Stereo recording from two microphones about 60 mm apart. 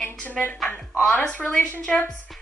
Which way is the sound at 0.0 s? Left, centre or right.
Left.